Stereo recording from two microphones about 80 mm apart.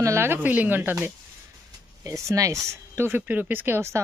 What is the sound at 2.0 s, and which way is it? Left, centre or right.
Speech, right.